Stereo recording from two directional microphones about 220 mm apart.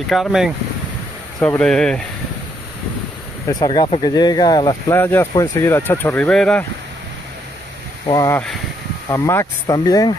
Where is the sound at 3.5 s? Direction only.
20° left (ahead or behind).